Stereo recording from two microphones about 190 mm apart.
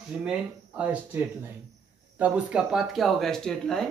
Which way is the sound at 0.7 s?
10° right (ahead or behind).